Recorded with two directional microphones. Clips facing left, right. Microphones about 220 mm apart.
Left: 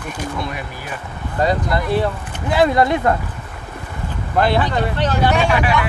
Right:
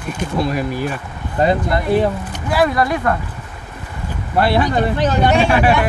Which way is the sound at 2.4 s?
25° left (ahead or behind).